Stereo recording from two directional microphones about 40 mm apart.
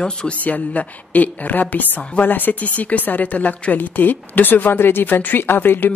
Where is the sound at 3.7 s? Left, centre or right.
Left.